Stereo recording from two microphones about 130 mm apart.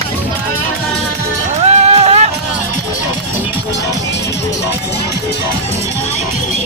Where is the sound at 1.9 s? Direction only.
50° right (ahead or behind).